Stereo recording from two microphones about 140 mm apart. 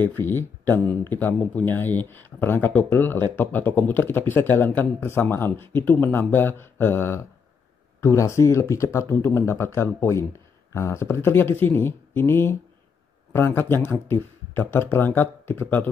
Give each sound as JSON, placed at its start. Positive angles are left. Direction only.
{"t": 0.2, "sound": "speech", "side_deg": 15}